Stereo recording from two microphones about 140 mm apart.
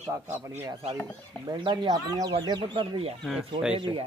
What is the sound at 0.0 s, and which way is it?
Speech, 15° right (ahead or behind).